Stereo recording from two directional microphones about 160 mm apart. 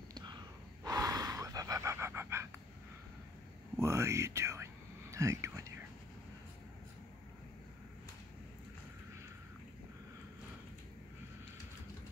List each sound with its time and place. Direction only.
0.1 s gasp: 25° right (ahead or behind)
3.8 s a sound: 15° right (ahead or behind)
5.1 s whispering: 20° right (ahead or behind)